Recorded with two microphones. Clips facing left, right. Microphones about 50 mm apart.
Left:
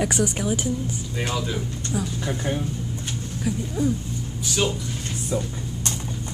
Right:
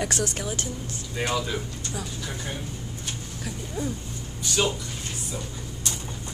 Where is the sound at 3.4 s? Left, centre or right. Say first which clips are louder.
Left 7 dB; centre.